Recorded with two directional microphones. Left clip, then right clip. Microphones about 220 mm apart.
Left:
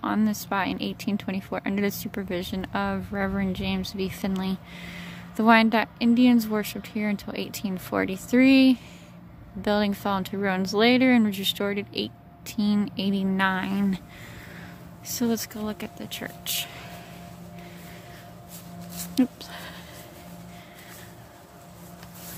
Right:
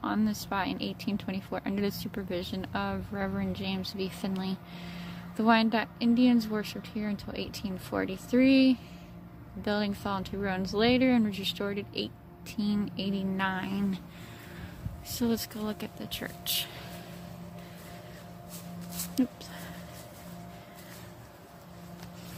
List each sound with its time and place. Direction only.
0.0 s a woman's voice: 15° left (ahead or behind)
15.0 s a woman's voice: 15° left (ahead or behind)
19.2 s speech: 20° left (ahead or behind)